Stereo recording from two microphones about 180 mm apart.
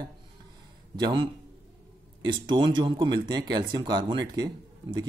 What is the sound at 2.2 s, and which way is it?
Speech, 25° right (ahead or behind).